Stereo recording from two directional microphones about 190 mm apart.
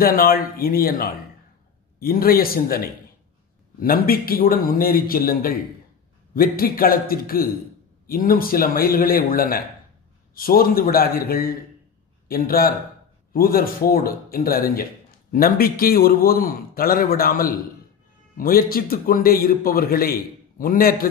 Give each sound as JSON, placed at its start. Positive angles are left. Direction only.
{"t": 0.0, "sound": "a man's voice", "side_deg": 50}